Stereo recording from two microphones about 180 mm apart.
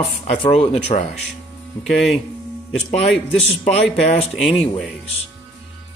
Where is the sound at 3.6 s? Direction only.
35° left (ahead or behind).